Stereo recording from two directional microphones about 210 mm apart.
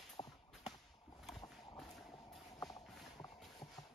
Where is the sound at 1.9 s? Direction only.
Centre (ahead or behind).